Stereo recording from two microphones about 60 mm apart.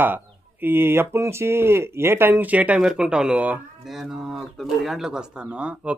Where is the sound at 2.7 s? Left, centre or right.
Centre.